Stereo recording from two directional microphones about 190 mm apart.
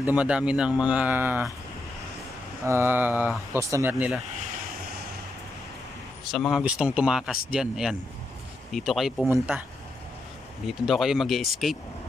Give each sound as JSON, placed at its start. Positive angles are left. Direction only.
{"t": 0.0, "sound": "speech", "side_deg": -5}
{"t": 2.6, "sound": "speech", "side_deg": -15}
{"t": 6.3, "sound": "speech", "side_deg": 0}
{"t": 10.7, "sound": "speech", "side_deg": 0}